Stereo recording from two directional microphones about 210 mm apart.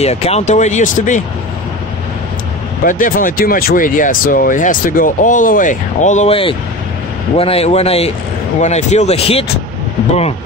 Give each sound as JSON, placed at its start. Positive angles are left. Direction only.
{"t": 0.0, "sound": "speech", "side_deg": 30}
{"t": 2.8, "sound": "speech", "side_deg": 40}